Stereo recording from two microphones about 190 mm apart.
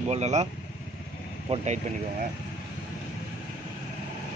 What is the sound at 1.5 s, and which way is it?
Speech, 35° right (ahead or behind).